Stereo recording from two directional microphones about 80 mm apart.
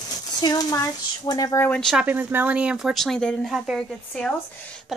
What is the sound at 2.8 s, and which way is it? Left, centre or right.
Speech, centre.